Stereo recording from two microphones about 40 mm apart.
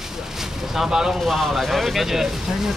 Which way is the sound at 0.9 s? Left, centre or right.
Centre.